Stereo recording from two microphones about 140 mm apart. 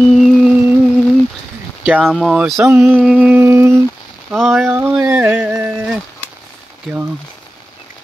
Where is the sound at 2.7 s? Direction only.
15° right (ahead or behind).